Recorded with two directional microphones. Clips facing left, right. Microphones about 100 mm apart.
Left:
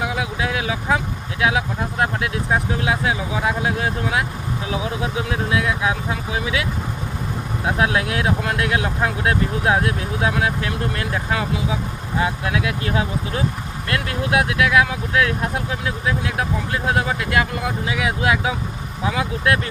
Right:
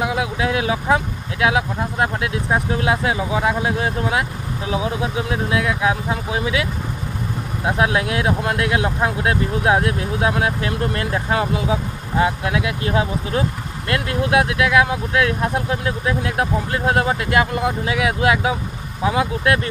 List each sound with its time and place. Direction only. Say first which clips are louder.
0.1 s speech: right 3 dB; 30° right (ahead or behind)
2.8 s speech: right 2 dB; 35° right (ahead or behind)
5.3 s speech: even; 35° right (ahead or behind)
7.7 s speech: right 1 dB; 25° right (ahead or behind)
17.1 s speech: right 2 dB; 30° right (ahead or behind)